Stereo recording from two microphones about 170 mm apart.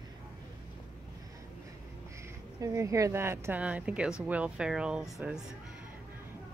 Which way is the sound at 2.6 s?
20° right (ahead or behind).